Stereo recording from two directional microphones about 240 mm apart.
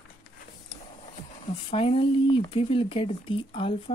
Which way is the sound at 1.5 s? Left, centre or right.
Left.